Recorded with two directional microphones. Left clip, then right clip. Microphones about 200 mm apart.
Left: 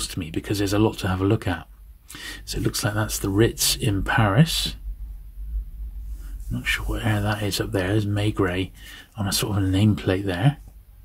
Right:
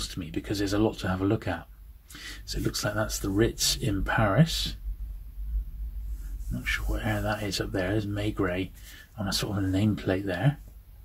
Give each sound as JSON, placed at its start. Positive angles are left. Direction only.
{"t": 0.0, "sound": "speech", "side_deg": 45}
{"t": 6.6, "sound": "speech", "side_deg": 45}